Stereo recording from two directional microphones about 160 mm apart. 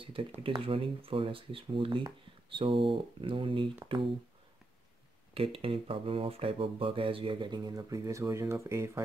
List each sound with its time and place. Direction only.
0.0 s speech: 35° right (ahead or behind)
5.3 s speech: 35° right (ahead or behind); by 9.0 s 20° right (ahead or behind)